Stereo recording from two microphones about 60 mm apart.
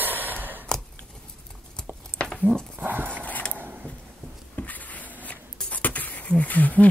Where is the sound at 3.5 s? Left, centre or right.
Right.